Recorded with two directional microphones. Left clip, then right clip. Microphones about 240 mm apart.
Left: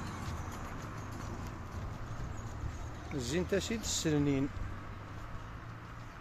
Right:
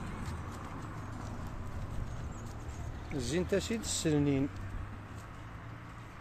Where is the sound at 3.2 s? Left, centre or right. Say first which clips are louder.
Right 1 dB; centre.